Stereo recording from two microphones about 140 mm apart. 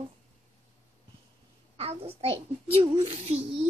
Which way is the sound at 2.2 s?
45° right (ahead or behind).